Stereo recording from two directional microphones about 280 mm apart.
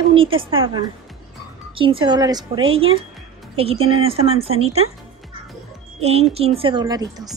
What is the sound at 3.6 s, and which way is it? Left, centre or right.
Speech, right.